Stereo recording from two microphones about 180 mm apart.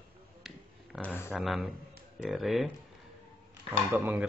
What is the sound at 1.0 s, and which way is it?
Speech, 10° left (ahead or behind).